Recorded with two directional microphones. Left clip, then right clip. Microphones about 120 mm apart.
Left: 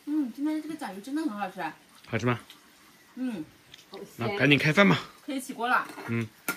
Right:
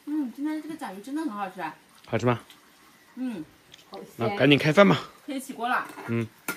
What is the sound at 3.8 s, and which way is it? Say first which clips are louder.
Speech: right 4 dB; 20° right (ahead or behind).